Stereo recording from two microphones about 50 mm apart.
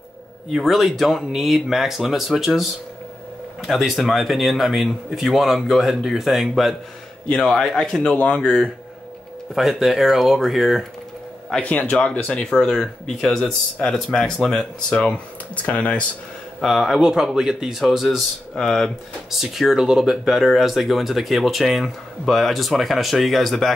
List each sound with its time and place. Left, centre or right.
0.5 s speech: centre
9.6 s speech: centre
11.5 s speech: left; by 14.7 s centre
14.9 s speech: centre
16.6 s a man's voice: centre
18.5 s speech: centre
19.3 s speech: centre